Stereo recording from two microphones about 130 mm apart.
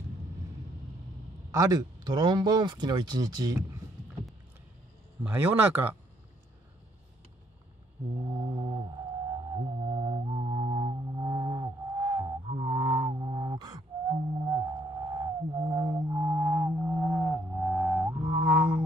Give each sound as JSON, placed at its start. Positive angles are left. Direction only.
{"t": 1.5, "sound": "speech", "side_deg": -25}
{"t": 5.2, "sound": "speech", "side_deg": -15}
{"t": 8.3, "sound": "mantra", "side_deg": -35}
{"t": 9.3, "sound": "music", "side_deg": -35}